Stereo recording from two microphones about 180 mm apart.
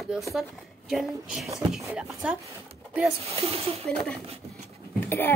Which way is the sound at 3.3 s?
30° right (ahead or behind).